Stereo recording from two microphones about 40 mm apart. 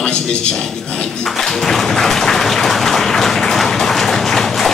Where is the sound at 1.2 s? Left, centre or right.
Centre.